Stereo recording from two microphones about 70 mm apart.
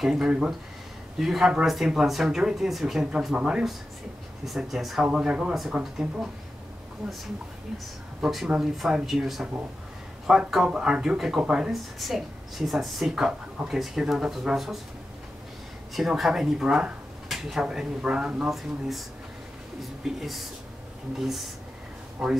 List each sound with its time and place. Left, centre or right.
0.0 s speech: centre
4.5 s speech: centre
5.0 s speech: centre
5.5 s speech: centre
5.8 s speech: centre
8.2 s speech: centre
15.9 s speech: centre